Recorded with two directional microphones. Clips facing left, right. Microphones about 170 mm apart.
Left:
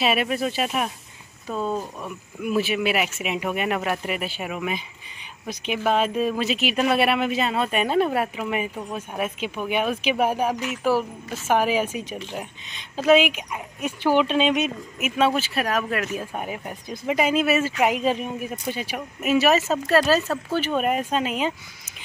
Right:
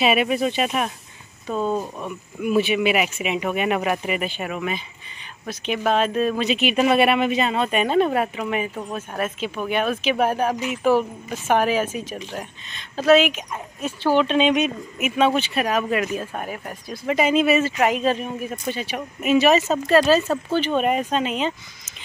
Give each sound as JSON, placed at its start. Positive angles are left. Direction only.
{"t": 0.0, "sound": "speech", "side_deg": 0}
{"t": 5.9, "sound": "speech", "side_deg": 10}
{"t": 17.1, "sound": "speech", "side_deg": 5}